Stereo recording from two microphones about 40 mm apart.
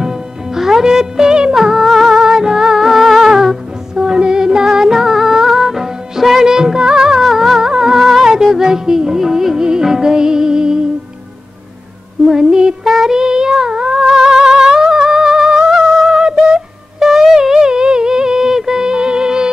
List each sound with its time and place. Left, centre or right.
0.0 s music: centre
2.1 s humming: centre
3.9 s music: right
7.2 s music: centre
8.0 s music: centre
12.3 s music: centre
12.8 s child singing: centre
13.2 s humming: centre
15.7 s music: centre
17.4 s music: centre